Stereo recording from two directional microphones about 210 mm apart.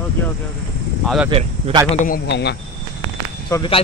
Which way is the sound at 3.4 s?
20° left (ahead or behind).